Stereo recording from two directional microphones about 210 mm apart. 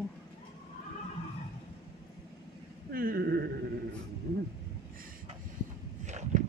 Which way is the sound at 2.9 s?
45° right (ahead or behind).